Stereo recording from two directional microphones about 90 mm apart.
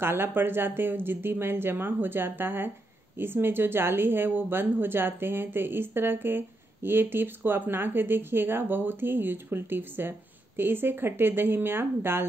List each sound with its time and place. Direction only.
0.0 s speech: 25° right (ahead or behind)